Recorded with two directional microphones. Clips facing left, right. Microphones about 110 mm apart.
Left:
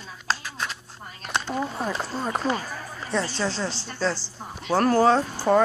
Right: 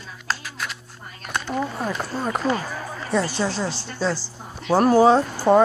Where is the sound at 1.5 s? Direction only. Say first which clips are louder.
Right 4 dB; centre (ahead or behind).